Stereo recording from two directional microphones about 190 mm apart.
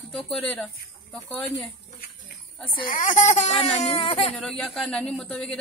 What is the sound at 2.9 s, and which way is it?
Speech, 45° left (ahead or behind).